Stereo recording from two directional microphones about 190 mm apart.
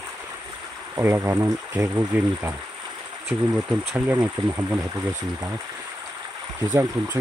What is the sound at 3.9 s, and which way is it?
Speech, 10° right (ahead or behind).